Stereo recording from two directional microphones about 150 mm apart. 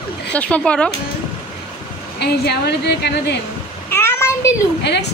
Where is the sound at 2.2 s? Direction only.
90° left.